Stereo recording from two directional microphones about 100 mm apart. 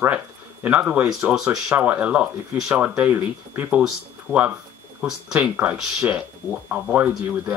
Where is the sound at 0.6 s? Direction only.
15° right (ahead or behind).